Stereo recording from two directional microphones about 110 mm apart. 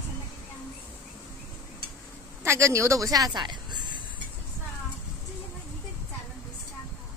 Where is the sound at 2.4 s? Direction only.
25° right (ahead or behind); by 4.0 s 45° right (ahead or behind).